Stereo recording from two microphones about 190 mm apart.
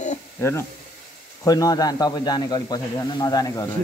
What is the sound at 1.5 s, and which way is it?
A man's voice, 20° left (ahead or behind).